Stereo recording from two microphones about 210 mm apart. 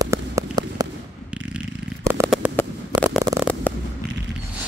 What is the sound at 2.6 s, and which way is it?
Fireworks, 10° left (ahead or behind).